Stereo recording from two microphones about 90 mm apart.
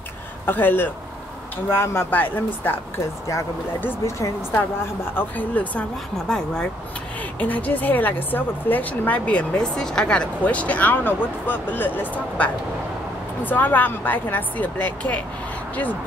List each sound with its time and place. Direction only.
0.5 s a woman's voice: 20° left (ahead or behind)
4.0 s speech: 35° left (ahead or behind)
5.1 s a woman's voice: 20° left (ahead or behind)